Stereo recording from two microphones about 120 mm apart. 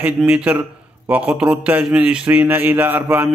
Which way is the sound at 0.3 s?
15° right (ahead or behind).